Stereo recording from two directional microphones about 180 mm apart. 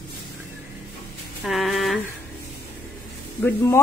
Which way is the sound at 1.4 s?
Centre (ahead or behind).